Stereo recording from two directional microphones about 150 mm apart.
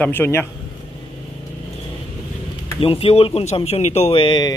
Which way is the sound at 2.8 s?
40° left (ahead or behind).